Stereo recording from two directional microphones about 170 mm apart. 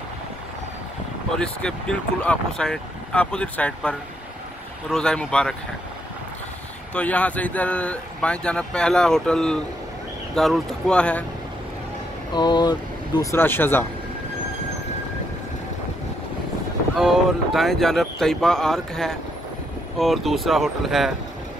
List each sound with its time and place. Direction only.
1.4 s speech: 5° left (ahead or behind)
4.9 s speech: 5° left (ahead or behind)
6.9 s speech: 10° left (ahead or behind)
12.4 s speech: 25° left (ahead or behind)
16.9 s speech: centre (ahead or behind)